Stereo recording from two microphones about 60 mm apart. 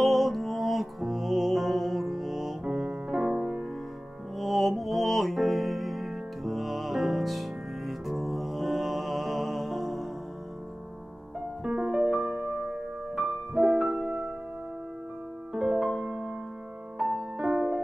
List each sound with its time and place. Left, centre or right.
0.0 s music: centre
2.6 s piano: centre
4.4 s music: centre
11.6 s music: centre
15.5 s music: centre